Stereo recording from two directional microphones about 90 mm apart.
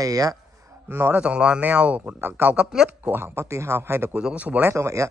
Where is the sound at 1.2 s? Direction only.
10° right (ahead or behind).